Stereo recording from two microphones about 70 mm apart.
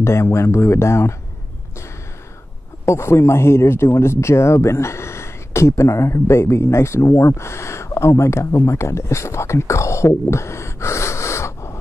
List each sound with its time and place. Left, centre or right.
0.0 s speech: left
2.8 s a man's voice: left